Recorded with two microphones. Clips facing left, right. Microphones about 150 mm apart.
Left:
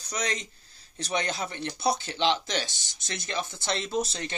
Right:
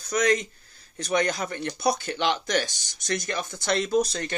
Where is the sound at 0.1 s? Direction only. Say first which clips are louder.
Right 9 dB; 55° right (ahead or behind).